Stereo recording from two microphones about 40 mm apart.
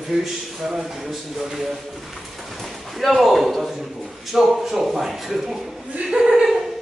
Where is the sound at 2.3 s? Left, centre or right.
Centre.